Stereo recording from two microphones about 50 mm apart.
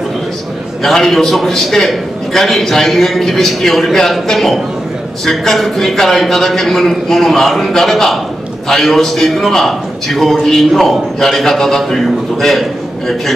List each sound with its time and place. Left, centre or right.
0.8 s a man's voice: centre